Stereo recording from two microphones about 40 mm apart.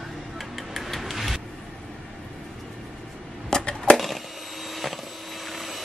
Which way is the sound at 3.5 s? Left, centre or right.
Centre.